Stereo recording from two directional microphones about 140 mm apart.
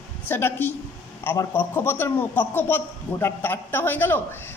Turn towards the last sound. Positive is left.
turn(degrees=15)  # may be behind; listen again after turning